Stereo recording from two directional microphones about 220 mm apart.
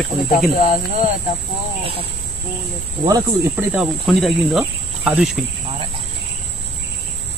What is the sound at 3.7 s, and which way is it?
Speech, centre (ahead or behind).